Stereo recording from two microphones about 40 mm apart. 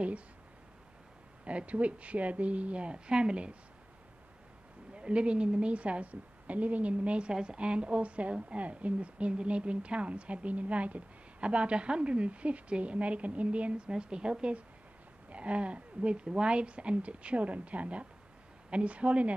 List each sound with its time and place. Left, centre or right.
1.4 s a woman's voice: right
4.9 s a woman's voice: right